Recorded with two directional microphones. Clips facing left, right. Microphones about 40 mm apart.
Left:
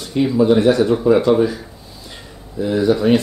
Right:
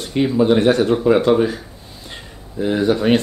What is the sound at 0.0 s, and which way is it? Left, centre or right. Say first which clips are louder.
Speech: left 1 dB; right.